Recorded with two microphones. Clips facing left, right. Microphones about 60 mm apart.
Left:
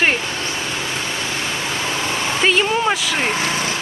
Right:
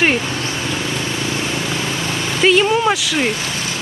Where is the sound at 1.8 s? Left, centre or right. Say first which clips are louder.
Even; left.